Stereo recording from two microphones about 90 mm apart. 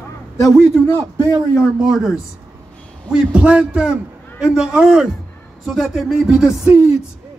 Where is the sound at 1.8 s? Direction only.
5° right (ahead or behind).